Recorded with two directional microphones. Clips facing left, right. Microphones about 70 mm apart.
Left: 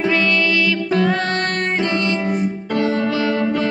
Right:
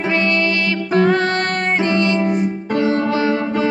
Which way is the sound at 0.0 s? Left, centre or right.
Right.